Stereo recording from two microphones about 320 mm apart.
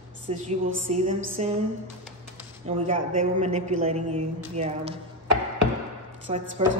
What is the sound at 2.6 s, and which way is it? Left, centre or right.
Speech, right.